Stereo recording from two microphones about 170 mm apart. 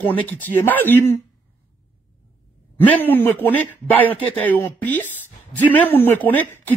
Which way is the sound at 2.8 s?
10° left (ahead or behind).